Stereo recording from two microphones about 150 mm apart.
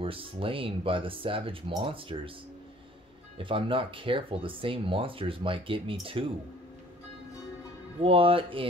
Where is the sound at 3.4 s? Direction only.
35° right (ahead or behind).